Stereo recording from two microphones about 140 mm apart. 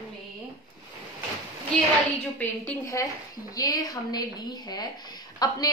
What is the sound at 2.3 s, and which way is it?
Speech, 10° left (ahead or behind).